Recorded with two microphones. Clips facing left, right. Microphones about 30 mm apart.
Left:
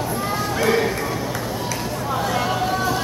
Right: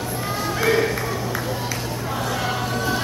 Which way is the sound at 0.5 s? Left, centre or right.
Centre.